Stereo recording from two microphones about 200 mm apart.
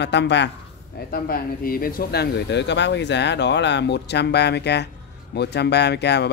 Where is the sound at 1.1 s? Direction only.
50° left (ahead or behind).